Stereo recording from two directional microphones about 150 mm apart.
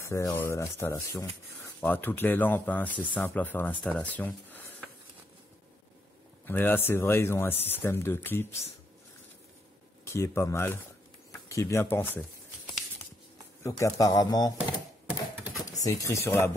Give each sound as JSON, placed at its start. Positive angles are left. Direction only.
{"t": 0.0, "sound": "speech", "side_deg": 20}
{"t": 6.4, "sound": "speech", "side_deg": 15}
{"t": 10.0, "sound": "speech", "side_deg": 20}
{"t": 13.6, "sound": "speech", "side_deg": 20}
{"t": 15.8, "sound": "speech", "side_deg": 20}